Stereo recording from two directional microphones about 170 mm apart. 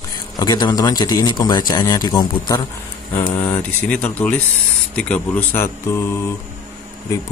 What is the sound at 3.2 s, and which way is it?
Speech, 10° left (ahead or behind).